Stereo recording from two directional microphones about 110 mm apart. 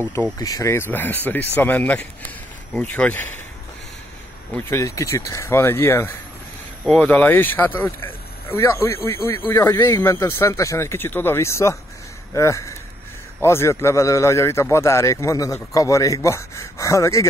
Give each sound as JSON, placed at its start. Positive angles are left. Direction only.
{"t": 0.4, "sound": "speech", "side_deg": 30}
{"t": 4.6, "sound": "a man's voice", "side_deg": 25}